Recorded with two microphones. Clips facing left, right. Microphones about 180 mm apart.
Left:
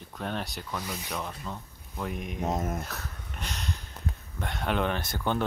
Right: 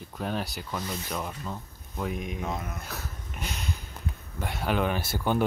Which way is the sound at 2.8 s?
Centre (ahead or behind).